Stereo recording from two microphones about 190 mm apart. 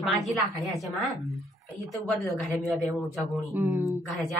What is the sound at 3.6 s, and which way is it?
Speech, 10° right (ahead or behind).